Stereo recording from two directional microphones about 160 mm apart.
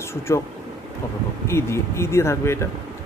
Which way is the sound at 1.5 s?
15° left (ahead or behind).